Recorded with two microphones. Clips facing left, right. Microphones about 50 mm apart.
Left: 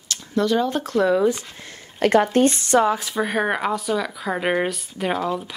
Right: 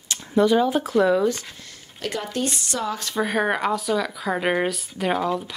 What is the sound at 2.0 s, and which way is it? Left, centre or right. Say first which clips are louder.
Speech: left 11 dB; left.